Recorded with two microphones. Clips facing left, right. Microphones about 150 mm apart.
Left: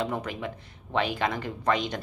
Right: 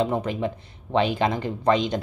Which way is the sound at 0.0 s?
25° right (ahead or behind).